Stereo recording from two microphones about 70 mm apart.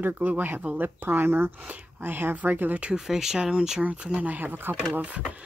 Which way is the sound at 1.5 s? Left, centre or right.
Right.